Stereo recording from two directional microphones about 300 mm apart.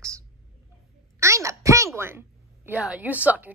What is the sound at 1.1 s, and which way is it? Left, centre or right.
A child's voice, centre.